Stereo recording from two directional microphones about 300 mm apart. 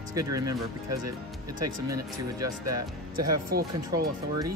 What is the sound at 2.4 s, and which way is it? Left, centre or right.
Speech, right.